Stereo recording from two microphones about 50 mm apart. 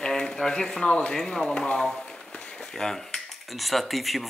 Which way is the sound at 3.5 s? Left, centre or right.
Centre.